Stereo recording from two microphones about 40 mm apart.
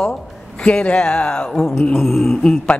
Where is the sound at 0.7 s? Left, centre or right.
Left.